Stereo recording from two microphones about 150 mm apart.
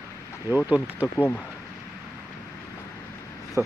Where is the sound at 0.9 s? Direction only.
15° left (ahead or behind).